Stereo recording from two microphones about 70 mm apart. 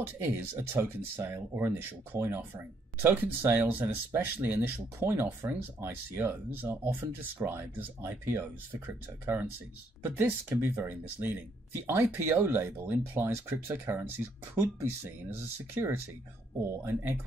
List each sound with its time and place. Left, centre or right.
0.0 s speech: right